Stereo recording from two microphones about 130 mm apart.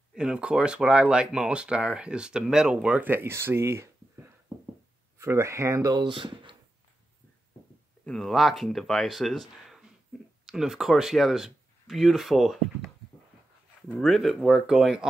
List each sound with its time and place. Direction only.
0.1 s speech: 5° right (ahead or behind); by 6.5 s 40° right (ahead or behind)
8.0 s speech: centre (ahead or behind)
13.9 s speech: centre (ahead or behind)